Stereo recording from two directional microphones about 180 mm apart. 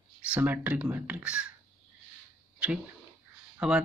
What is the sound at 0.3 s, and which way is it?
Speech, 10° right (ahead or behind).